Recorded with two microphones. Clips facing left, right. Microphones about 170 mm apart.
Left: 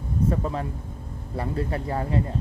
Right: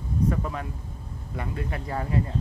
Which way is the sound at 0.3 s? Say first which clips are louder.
Left 3 dB; 30° left (ahead or behind).